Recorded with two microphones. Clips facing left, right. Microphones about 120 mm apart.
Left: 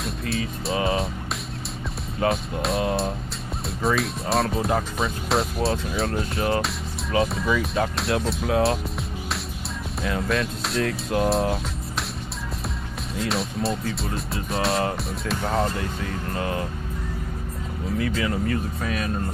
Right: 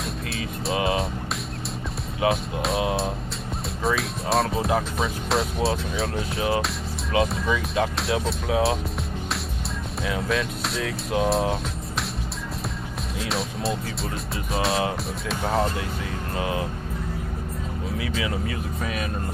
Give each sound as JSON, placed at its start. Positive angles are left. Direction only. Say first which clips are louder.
{"t": 0.0, "sound": "speech", "louder": "left 3 dB", "side_deg": 0}
{"t": 2.1, "sound": "speech", "louder": "even", "side_deg": 0}
{"t": 10.0, "sound": "speech", "louder": "left 1 dB", "side_deg": 0}
{"t": 13.1, "sound": "speech", "louder": "left 3 dB", "side_deg": 0}
{"t": 17.9, "sound": "speech", "louder": "left 4 dB", "side_deg": -5}